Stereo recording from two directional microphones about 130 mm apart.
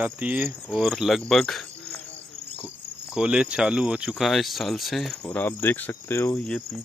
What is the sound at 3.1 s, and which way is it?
Cricket, 10° right (ahead or behind).